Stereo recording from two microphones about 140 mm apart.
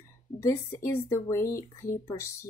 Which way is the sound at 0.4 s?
20° left (ahead or behind).